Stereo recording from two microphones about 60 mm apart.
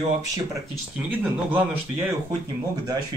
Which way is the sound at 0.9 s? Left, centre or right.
Right.